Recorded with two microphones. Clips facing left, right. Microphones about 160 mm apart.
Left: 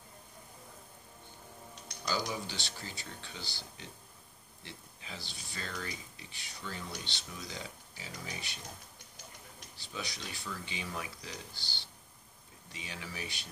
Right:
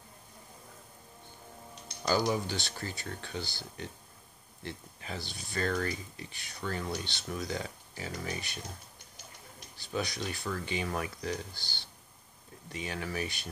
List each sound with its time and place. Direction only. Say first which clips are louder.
2.0 s speech: right 7 dB; 50° right (ahead or behind)
9.8 s speech: right 8 dB; 50° right (ahead or behind)